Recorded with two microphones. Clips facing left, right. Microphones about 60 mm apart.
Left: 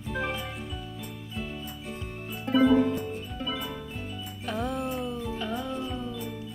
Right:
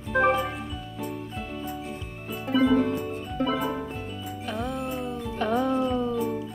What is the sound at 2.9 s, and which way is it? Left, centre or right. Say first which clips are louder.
Music: right 2 dB; right.